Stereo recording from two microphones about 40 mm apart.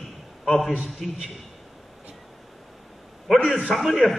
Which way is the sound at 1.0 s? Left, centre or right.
Centre.